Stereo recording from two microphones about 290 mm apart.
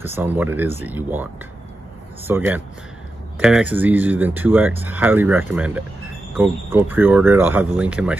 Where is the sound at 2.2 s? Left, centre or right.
Centre.